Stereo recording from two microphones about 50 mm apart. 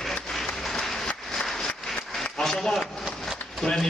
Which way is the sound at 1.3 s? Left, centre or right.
Centre.